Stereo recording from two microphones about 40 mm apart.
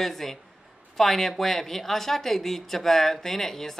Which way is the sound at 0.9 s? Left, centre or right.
Centre.